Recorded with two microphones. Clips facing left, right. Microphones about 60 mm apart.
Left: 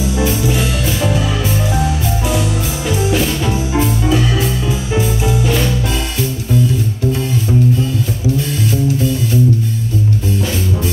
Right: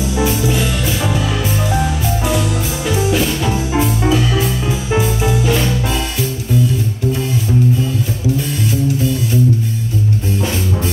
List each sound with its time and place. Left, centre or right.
0.2 s music: centre
3.1 s music: centre
4.9 s music: centre